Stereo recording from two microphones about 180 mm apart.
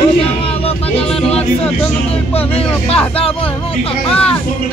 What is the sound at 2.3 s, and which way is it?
Speech, 35° left (ahead or behind).